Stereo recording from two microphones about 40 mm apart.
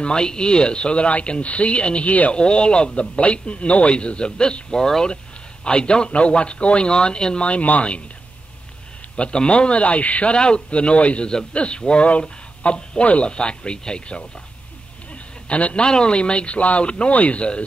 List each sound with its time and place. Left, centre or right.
0.0 s a man's voice: centre
7.4 s a man's voice: left
9.1 s a man's voice: left
10.3 s a man's voice: left
15.4 s a man's voice: left